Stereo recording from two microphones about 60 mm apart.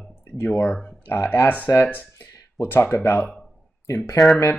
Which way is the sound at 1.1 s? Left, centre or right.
Left.